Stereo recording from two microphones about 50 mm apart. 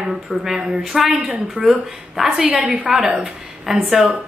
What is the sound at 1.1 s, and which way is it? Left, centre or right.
A woman's voice, right.